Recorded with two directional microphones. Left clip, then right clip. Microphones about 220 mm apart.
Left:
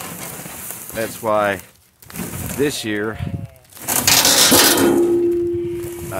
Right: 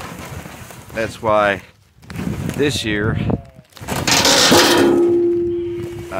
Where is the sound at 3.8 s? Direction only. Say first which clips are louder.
Even; 5° right (ahead or behind).